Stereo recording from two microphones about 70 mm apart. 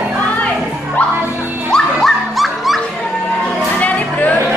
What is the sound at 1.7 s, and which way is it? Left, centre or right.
Music, centre.